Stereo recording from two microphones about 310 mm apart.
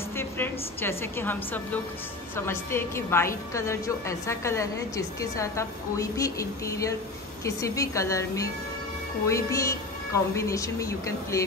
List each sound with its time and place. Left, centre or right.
0.1 s a woman's voice: centre